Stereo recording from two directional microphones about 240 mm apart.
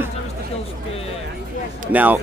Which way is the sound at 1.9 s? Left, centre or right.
Centre.